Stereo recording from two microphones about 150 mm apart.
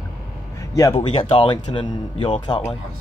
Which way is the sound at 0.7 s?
30° left (ahead or behind).